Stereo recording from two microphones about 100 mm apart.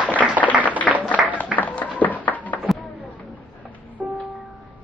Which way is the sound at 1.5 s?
15° left (ahead or behind).